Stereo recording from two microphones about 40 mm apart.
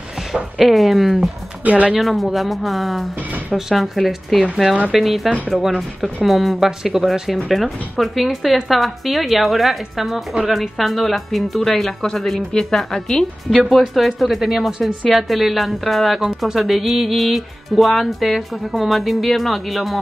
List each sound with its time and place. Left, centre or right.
0.3 s a woman's voice: centre
1.6 s speech: right
2.0 s a woman's voice: centre